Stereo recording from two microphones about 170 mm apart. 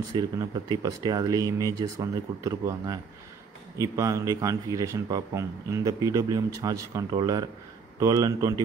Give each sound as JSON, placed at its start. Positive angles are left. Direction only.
{"t": 0.1, "sound": "a man's voice", "side_deg": -20}